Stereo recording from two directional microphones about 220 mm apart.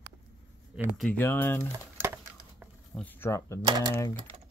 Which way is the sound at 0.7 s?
Centre (ahead or behind).